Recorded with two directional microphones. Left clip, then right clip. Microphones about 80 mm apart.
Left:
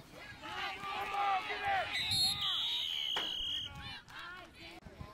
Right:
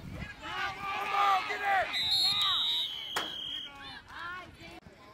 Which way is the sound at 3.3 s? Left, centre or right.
Left.